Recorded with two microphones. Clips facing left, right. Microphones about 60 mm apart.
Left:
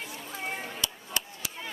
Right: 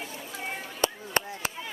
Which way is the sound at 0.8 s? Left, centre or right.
Right.